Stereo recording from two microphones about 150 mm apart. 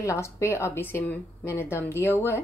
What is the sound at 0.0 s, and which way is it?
A woman's voice, 20° left (ahead or behind).